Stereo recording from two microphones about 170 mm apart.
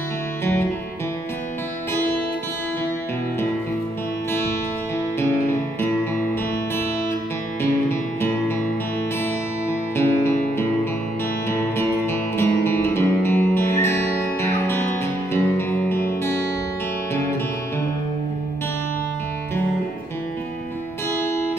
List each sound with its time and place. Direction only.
5.2 s music: 15° left (ahead or behind)
7.6 s music: 15° left (ahead or behind)
11.4 s music: 15° left (ahead or behind)
21.1 s music: 15° left (ahead or behind)